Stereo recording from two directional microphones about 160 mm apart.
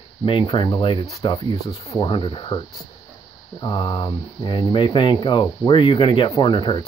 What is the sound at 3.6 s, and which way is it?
Speech, 25° left (ahead or behind).